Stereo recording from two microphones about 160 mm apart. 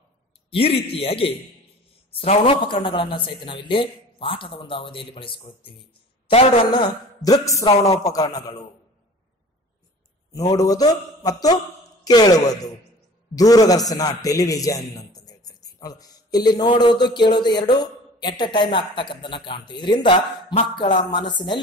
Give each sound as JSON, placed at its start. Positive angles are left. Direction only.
{"t": 0.5, "sound": "a man's voice", "side_deg": 35}
{"t": 6.7, "sound": "a woman's voice", "side_deg": 25}
{"t": 10.3, "sound": "a man's voice", "side_deg": 20}